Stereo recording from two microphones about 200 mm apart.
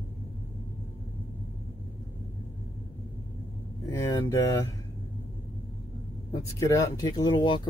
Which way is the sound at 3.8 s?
15° left (ahead or behind).